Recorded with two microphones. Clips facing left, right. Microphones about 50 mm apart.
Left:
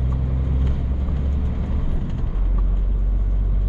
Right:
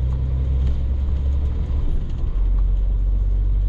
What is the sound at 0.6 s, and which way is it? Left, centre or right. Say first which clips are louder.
Vehicle: left 3 dB; left.